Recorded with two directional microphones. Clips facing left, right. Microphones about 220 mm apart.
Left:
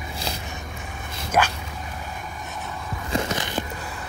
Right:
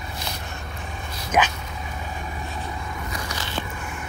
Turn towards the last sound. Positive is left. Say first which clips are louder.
# left 6 dB
turn(degrees=20)  # may be behind; listen again after turning